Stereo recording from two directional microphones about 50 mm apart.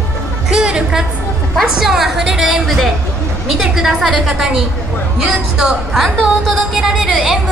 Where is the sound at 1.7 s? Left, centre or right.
Centre.